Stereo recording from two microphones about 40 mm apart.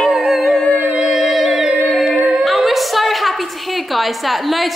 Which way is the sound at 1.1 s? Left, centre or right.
Centre.